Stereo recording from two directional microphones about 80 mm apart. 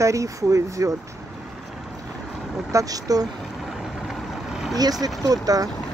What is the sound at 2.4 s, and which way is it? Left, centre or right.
Vehicle, centre.